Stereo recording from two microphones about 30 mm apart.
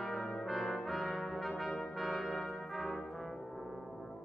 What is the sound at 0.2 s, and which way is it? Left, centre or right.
Brass instrument, centre.